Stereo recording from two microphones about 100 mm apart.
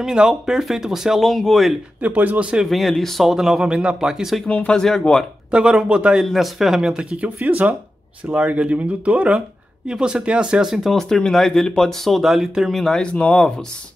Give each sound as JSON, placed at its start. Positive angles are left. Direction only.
{"t": 0.0, "sound": "speech", "side_deg": -5}
{"t": 2.0, "sound": "speech", "side_deg": -15}
{"t": 4.5, "sound": "speech", "side_deg": 10}
{"t": 5.5, "sound": "speech", "side_deg": -5}